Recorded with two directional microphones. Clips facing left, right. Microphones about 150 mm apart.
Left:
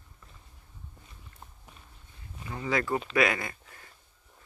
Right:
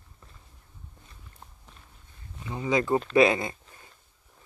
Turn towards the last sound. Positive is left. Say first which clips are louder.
# right 5 dB
turn(degrees=-25)  # may be behind; listen again after turning